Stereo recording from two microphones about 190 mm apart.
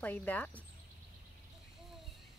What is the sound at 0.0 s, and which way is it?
Speech, 10° left (ahead or behind).